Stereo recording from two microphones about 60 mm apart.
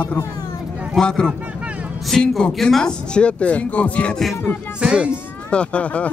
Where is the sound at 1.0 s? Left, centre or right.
Centre.